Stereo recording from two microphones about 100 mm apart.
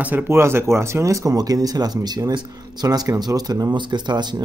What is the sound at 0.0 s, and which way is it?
Speech, 20° right (ahead or behind).